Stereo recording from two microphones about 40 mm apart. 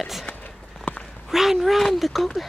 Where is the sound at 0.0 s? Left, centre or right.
Centre.